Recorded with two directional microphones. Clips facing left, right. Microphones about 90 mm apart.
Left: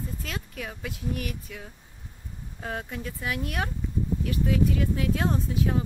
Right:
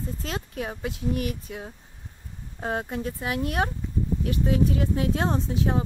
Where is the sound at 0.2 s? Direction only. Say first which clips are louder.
Right 4 dB; 30° right (ahead or behind).